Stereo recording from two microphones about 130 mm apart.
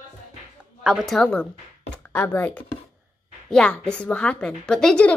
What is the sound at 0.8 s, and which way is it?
A woman's voice, centre (ahead or behind).